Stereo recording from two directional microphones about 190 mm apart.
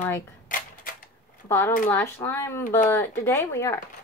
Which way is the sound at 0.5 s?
45° left (ahead or behind).